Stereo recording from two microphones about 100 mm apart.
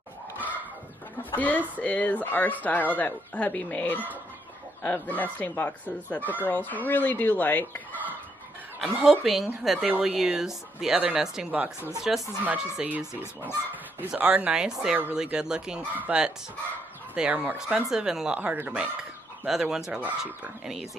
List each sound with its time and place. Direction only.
1.3 s speech: 15° left (ahead or behind)
8.8 s speech: centre (ahead or behind)
9.8 s speech: 15° right (ahead or behind)
14.1 s speech: 15° right (ahead or behind)
19.4 s speech: 5° right (ahead or behind)